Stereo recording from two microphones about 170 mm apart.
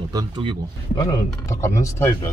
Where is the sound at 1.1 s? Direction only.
20° left (ahead or behind).